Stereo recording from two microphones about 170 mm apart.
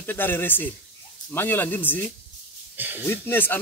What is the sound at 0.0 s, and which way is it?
Speech, 10° left (ahead or behind).